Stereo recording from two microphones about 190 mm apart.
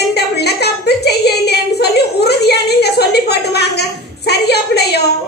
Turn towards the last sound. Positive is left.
turn(degrees=60)  # may be behind; listen again after turning